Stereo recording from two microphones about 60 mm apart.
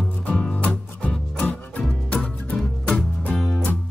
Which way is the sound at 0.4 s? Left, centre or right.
Centre.